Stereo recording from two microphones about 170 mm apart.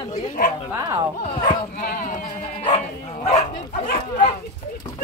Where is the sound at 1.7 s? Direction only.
55° left (ahead or behind).